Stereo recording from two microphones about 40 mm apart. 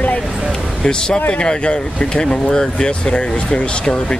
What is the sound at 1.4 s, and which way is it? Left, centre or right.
Speech, left.